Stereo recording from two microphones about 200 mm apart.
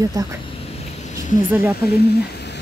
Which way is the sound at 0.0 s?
20° right (ahead or behind).